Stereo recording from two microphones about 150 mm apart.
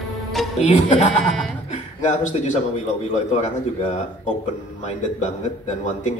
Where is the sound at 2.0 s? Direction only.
55° left (ahead or behind).